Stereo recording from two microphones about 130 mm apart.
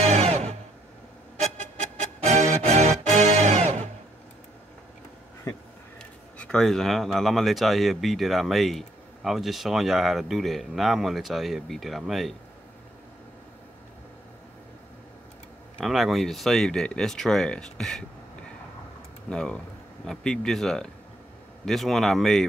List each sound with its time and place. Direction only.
0.0 s music: 55° right (ahead or behind)
2.1 s music: 65° right (ahead or behind)
5.9 s speech: 5° left (ahead or behind)
15.8 s speech: centre (ahead or behind)
19.2 s speech: 5° left (ahead or behind)